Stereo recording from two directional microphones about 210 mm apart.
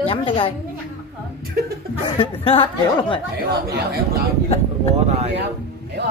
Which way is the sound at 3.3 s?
50° right (ahead or behind).